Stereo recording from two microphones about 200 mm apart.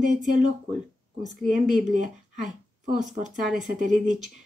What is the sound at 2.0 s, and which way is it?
Speech, 40° right (ahead or behind).